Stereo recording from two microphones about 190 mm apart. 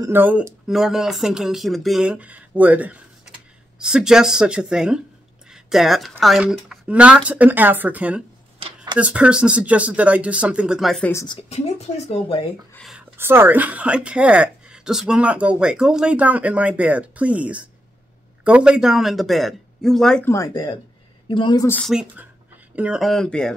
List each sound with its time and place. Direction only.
0.0 s speech: 10° right (ahead or behind)
8.5 s a sound: 30° right (ahead or behind)
8.9 s a woman's voice: 5° right (ahead or behind)
11.1 s speech: 15° left (ahead or behind)
11.4 s speech: 35° left (ahead or behind)
12.7 s speech: centre (ahead or behind)
13.2 s a woman's voice: 10° right (ahead or behind)
20.2 s speech: 15° left (ahead or behind)
21.6 s speech: 10° left (ahead or behind)
22.8 s speech: 5° right (ahead or behind)